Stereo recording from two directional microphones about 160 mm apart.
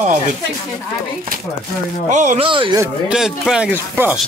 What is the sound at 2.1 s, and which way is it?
Speech, 50° right (ahead or behind).